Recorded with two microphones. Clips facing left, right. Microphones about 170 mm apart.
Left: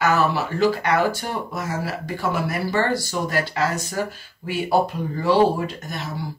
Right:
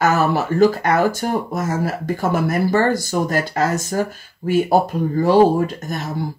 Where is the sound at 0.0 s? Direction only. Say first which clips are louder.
Right 3 dB; 45° right (ahead or behind).